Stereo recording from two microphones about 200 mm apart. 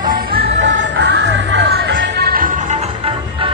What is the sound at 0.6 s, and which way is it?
Music, 60° right (ahead or behind).